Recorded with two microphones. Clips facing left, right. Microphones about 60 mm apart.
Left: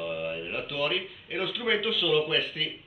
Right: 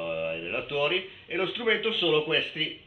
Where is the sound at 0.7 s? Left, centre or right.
Centre.